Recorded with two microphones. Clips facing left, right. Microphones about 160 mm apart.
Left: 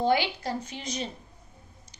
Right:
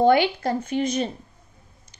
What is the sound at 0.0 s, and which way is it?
A woman's voice, 55° right (ahead or behind).